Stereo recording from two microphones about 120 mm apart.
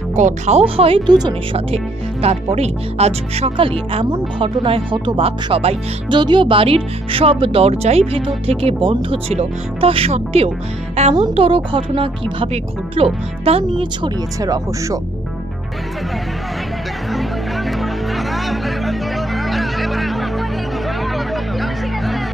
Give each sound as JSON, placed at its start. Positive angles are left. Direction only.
{"t": 0.1, "sound": "speech", "side_deg": -75}
{"t": 1.0, "sound": "speech", "side_deg": -35}
{"t": 2.2, "sound": "speech", "side_deg": -60}
{"t": 6.1, "sound": "speech", "side_deg": -40}
{"t": 14.0, "sound": "speech", "side_deg": -30}
{"t": 17.6, "sound": "music", "side_deg": 0}
{"t": 21.5, "sound": "music", "side_deg": 0}